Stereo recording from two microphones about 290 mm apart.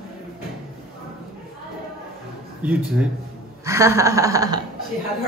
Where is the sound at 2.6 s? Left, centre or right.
Centre.